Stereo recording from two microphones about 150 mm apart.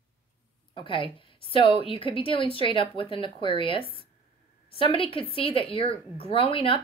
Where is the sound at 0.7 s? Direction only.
35° left (ahead or behind).